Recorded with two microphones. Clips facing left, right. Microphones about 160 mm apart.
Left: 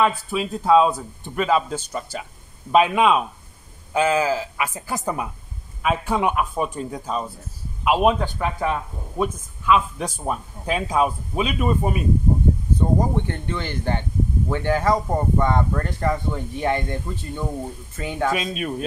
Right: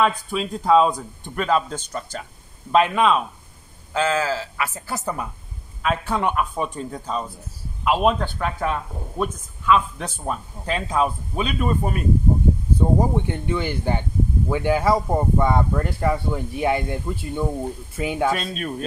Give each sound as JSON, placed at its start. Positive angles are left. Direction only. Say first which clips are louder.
{"t": 0.0, "sound": "speech", "louder": "even", "side_deg": 5}
{"t": 12.7, "sound": "speech", "louder": "right 1 dB", "side_deg": -10}
{"t": 18.3, "sound": "speech", "louder": "left 1 dB", "side_deg": 10}